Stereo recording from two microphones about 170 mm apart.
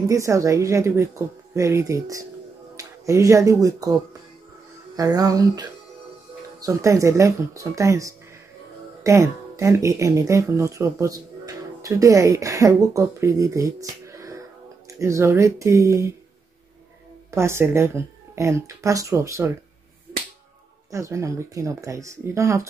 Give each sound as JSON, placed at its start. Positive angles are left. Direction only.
{"t": 0.0, "sound": "speech", "side_deg": -20}
{"t": 4.9, "sound": "music", "side_deg": -20}
{"t": 6.6, "sound": "speech", "side_deg": -20}
{"t": 17.3, "sound": "speech", "side_deg": -15}
{"t": 20.9, "sound": "speech", "side_deg": -20}